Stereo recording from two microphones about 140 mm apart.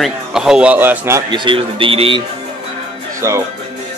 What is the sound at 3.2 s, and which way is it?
Speech, 20° right (ahead or behind).